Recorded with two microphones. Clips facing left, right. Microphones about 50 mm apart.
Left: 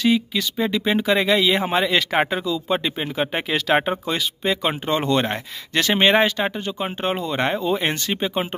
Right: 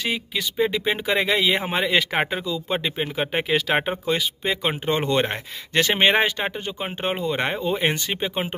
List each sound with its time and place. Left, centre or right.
0.0 s speech: right